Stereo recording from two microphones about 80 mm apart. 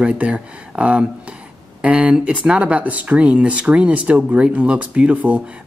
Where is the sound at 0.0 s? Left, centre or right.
Centre.